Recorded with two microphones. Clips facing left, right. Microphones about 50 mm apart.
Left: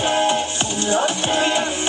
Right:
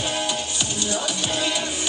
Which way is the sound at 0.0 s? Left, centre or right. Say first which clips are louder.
Left 8 dB; left.